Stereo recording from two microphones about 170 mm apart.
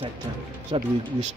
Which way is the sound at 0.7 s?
30° right (ahead or behind).